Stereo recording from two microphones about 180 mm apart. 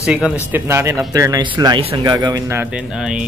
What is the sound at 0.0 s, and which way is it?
Speech, 5° right (ahead or behind).